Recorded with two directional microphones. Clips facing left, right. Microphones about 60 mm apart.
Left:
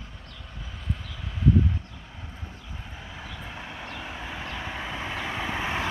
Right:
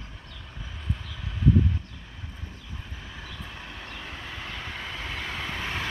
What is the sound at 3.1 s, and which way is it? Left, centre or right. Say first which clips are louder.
Vehicle: left 2 dB; centre.